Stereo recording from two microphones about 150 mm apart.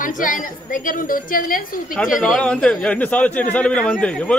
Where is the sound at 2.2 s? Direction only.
5° left (ahead or behind).